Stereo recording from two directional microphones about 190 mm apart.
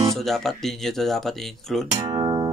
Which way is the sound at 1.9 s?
20° right (ahead or behind).